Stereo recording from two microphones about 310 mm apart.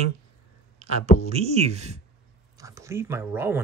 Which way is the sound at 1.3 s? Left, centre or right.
Centre.